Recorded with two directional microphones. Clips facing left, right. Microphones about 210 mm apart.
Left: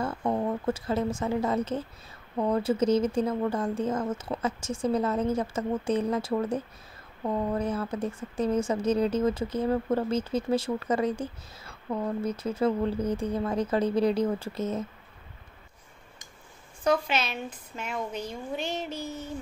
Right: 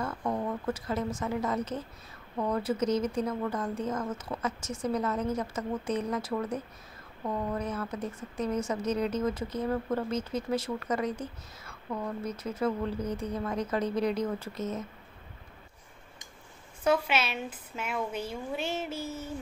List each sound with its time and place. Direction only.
0.0 s a woman's voice: 25° left (ahead or behind)
16.8 s a woman's voice: 5° right (ahead or behind)